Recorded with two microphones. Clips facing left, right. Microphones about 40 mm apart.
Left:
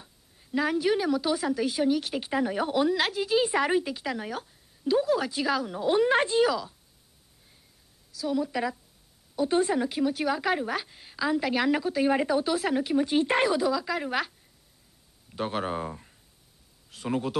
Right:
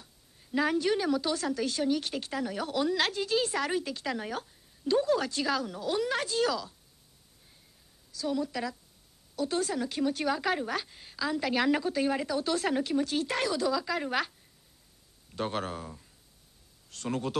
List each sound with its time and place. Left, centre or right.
0.4 s a woman's voice: centre
2.1 s a woman's voice: centre
5.8 s speech: left
6.4 s a woman's voice: centre
8.1 s a woman's voice: centre
8.5 s speech: centre
9.9 s a woman's voice: centre
12.1 s speech: left
12.4 s a woman's voice: centre
12.9 s speech: left
13.7 s a woman's voice: centre
15.3 s a woman's voice: centre
15.7 s speech: left
16.9 s a woman's voice: centre